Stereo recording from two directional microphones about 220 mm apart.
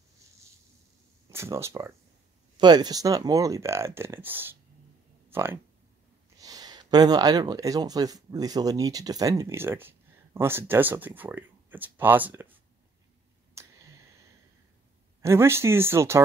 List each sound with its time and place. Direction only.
1.3 s speech: 10° right (ahead or behind)
13.6 s a sound: 15° right (ahead or behind)
15.2 s speech: 10° right (ahead or behind)